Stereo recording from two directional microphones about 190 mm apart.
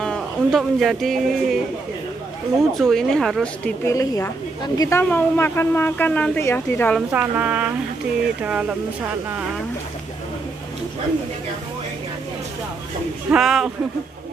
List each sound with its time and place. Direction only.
0.0 s speech: 5° left (ahead or behind)
2.8 s speech: centre (ahead or behind)
3.8 s speech: 15° left (ahead or behind)
7.1 s speech: 10° right (ahead or behind)
13.3 s speech: centre (ahead or behind)